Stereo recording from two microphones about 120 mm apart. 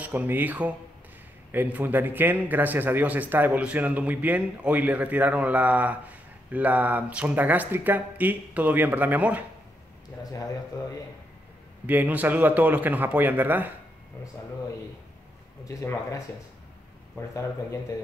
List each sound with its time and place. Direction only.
0.0 s speech: 15° right (ahead or behind)
10.1 s speech: 10° left (ahead or behind)
11.8 s speech: 15° right (ahead or behind)
15.8 s speech: 15° left (ahead or behind)